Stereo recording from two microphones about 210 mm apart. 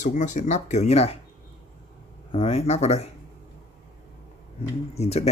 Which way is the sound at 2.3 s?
30° left (ahead or behind).